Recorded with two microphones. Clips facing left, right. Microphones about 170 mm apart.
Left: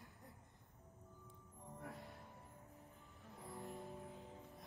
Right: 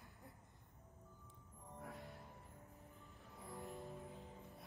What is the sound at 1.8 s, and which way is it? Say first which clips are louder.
Music: even; centre (ahead or behind).